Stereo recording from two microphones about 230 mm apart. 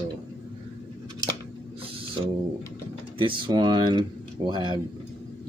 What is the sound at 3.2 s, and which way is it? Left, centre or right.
Speech, right.